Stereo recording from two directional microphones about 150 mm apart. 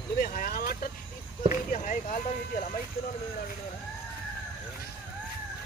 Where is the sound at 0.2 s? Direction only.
70° left (ahead or behind).